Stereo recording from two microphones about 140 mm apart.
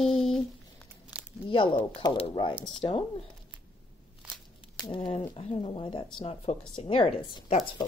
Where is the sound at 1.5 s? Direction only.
40° left (ahead or behind).